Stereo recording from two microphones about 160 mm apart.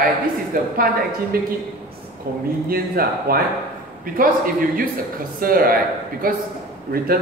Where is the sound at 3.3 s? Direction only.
65° right (ahead or behind).